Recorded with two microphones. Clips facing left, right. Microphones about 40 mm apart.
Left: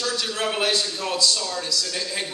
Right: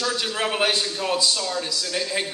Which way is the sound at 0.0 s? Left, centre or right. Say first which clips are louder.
Right 1 dB; centre.